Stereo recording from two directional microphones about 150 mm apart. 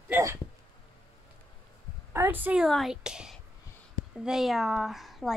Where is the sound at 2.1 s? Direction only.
15° right (ahead or behind).